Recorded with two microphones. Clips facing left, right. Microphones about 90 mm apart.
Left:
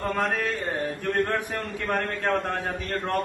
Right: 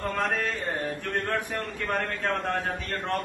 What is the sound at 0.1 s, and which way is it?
A man's voice, centre (ahead or behind).